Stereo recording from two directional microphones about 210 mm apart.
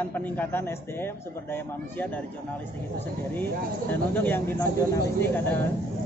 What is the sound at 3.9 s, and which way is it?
A man's voice, 10° left (ahead or behind).